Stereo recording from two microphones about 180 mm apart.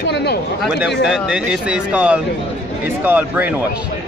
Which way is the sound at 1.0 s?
5° right (ahead or behind).